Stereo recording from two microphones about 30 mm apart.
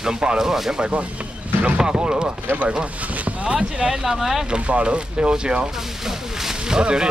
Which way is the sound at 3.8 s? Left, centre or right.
Right.